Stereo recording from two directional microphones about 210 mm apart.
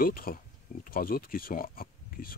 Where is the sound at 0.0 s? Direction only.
45° left (ahead or behind).